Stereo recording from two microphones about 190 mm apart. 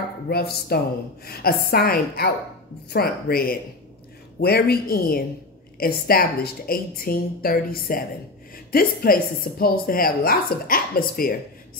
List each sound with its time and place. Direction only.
0.3 s a woman's voice: 55° left (ahead or behind)